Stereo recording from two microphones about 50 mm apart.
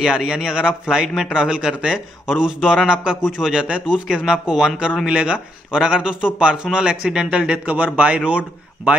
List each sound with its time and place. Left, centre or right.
0.0 s a man's voice: centre